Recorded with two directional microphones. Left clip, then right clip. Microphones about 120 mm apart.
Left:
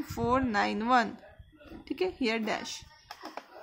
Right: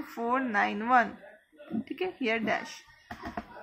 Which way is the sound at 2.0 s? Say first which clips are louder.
Even; 90° left.